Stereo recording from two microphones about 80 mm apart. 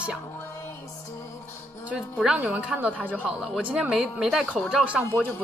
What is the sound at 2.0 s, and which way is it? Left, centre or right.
Speech, centre.